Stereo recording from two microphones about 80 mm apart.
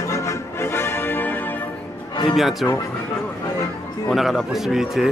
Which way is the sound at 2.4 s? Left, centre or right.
Centre.